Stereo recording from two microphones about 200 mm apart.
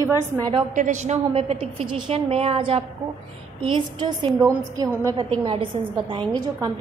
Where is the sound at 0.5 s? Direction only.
35° right (ahead or behind).